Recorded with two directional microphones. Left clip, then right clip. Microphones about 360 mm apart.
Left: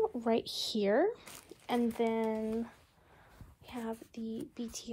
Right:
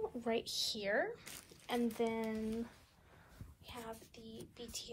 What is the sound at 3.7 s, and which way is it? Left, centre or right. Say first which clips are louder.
Whispering: left 6 dB; centre.